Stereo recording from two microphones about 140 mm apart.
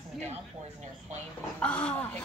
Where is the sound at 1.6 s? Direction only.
10° left (ahead or behind).